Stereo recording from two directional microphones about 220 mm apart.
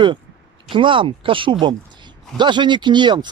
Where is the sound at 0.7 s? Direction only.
25° right (ahead or behind).